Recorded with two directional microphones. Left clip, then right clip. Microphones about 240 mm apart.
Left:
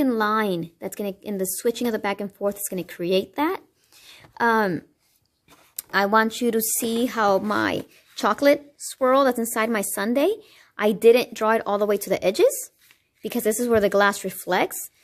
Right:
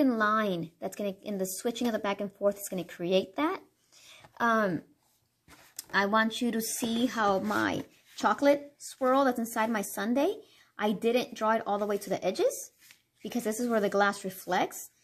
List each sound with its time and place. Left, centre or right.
0.0 s a woman's voice: left
5.9 s speech: left